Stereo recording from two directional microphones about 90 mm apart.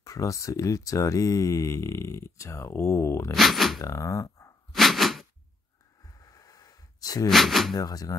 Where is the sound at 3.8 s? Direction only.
35° left (ahead or behind).